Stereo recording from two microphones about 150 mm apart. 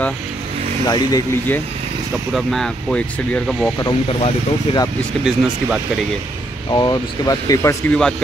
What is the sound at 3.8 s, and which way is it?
Speech, 40° left (ahead or behind).